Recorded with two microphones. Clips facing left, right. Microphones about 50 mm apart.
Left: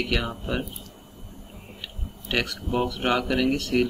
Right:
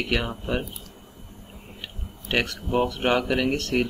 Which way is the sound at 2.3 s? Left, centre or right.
Centre.